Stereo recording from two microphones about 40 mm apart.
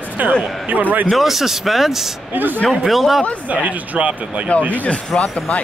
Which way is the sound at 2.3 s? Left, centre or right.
Right.